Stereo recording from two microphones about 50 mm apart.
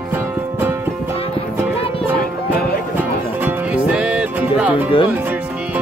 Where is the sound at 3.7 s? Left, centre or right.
Right.